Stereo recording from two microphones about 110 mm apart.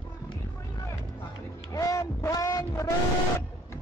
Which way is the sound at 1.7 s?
30° left (ahead or behind).